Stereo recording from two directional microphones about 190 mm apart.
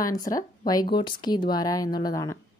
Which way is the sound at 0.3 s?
20° left (ahead or behind).